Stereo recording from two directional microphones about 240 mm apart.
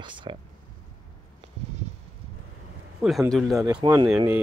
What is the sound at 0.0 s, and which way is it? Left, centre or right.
Speech, centre.